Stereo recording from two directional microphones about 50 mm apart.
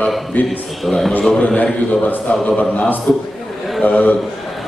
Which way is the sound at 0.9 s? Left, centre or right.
Centre.